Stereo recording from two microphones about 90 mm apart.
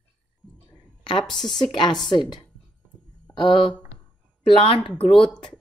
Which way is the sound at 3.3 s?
70° left (ahead or behind).